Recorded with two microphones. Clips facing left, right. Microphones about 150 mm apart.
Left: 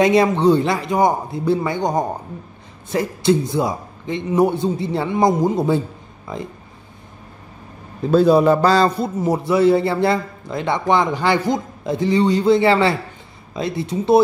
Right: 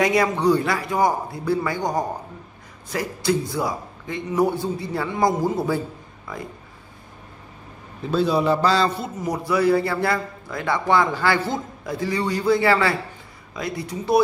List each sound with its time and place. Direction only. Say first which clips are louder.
0.0 s a man's voice: left 5 dB; 25° left (ahead or behind)
8.1 s a man's voice: left 7 dB; 45° left (ahead or behind)
9.2 s a man's voice: left 5 dB; 25° left (ahead or behind)